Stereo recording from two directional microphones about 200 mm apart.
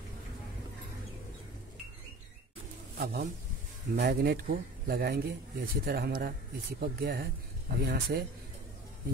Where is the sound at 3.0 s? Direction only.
50° right (ahead or behind).